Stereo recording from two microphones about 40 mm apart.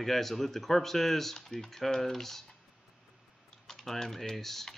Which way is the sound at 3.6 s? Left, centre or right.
Centre.